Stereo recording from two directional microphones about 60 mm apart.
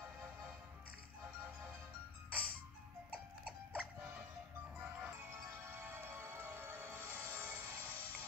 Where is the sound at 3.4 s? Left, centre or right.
Right.